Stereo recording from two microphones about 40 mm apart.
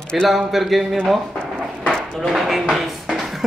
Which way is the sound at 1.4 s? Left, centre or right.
Left.